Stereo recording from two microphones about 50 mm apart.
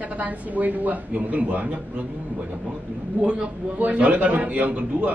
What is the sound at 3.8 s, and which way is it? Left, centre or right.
A man's voice, right.